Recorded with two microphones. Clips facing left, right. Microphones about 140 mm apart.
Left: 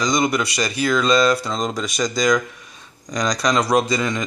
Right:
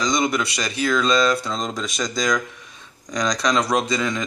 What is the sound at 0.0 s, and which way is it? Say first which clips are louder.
Speech: left 2 dB; centre (ahead or behind).